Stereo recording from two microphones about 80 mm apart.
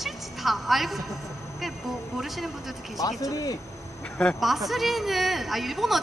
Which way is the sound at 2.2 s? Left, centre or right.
Centre.